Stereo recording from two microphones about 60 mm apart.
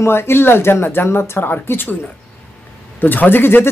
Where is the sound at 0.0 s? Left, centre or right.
Left.